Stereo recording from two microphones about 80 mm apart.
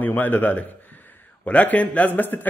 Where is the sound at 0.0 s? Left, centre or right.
Left.